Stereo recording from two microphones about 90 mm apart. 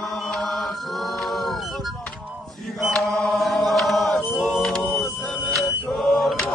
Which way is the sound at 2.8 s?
Centre (ahead or behind).